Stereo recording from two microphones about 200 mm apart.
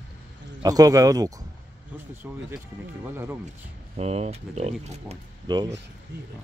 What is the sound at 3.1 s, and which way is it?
Speech, 10° right (ahead or behind).